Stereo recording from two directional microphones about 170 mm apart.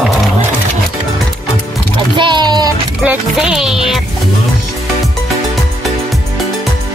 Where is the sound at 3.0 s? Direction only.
5° right (ahead or behind).